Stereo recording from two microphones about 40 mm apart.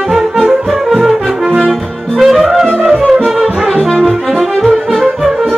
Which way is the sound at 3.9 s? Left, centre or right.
Centre.